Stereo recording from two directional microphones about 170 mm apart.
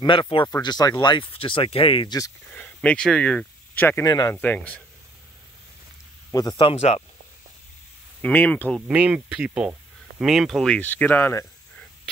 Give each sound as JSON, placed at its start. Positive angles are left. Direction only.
{"t": 0.0, "sound": "speech", "side_deg": 30}
{"t": 2.5, "sound": "speech", "side_deg": 10}
{"t": 4.4, "sound": "speech", "side_deg": 10}
{"t": 6.3, "sound": "speech", "side_deg": 25}
{"t": 6.7, "sound": "speech", "side_deg": 40}
{"t": 8.2, "sound": "speech", "side_deg": 10}
{"t": 8.8, "sound": "speech", "side_deg": -5}